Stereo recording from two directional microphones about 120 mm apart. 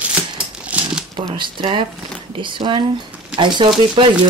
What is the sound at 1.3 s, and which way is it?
Speech, 45° right (ahead or behind).